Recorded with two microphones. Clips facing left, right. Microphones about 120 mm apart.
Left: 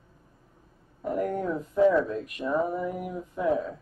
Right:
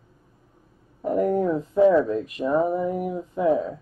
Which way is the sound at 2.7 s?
15° right (ahead or behind).